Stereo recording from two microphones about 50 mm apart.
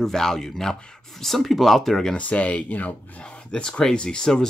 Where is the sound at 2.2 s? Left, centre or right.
Left.